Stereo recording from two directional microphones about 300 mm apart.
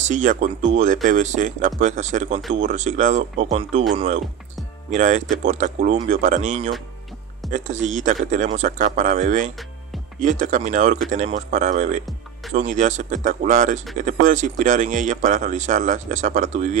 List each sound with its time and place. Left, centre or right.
0.1 s speech: right
4.9 s speech: right